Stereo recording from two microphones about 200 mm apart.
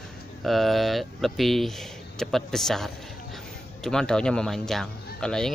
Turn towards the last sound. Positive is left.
turn(degrees=5)  # may be behind; listen again after turning